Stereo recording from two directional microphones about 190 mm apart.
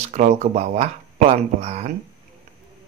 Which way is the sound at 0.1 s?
40° right (ahead or behind).